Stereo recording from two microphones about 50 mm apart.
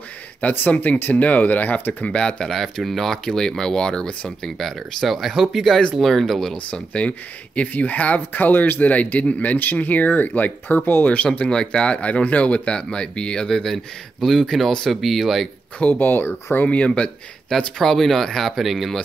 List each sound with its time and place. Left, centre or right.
0.4 s speech: left
2.1 s speech: centre
2.5 s speech: centre
6.5 s speech: left
8.8 s speech: left
10.9 s speech: left
11.3 s speech: centre
14.2 s speech: centre
15.8 s speech: left
16.6 s speech: left
17.5 s speech: centre